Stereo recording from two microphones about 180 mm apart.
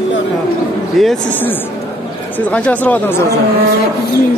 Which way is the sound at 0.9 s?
Centre (ahead or behind).